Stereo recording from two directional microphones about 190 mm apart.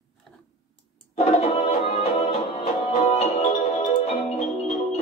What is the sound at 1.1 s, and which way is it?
Music, 35° left (ahead or behind).